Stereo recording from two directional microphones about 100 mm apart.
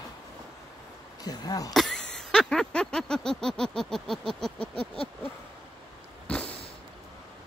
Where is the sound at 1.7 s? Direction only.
5° left (ahead or behind).